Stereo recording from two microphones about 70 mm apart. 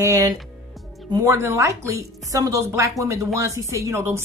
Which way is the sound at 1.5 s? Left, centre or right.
Right.